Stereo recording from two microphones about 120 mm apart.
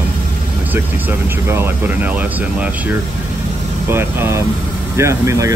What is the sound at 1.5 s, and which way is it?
Speech, 20° right (ahead or behind).